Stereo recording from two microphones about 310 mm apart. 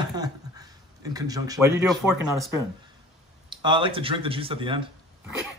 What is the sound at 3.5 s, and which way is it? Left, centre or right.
Speech, centre.